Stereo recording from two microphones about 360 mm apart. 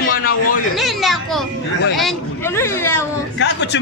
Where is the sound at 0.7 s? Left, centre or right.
Centre.